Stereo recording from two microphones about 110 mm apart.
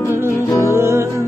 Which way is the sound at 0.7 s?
25° right (ahead or behind).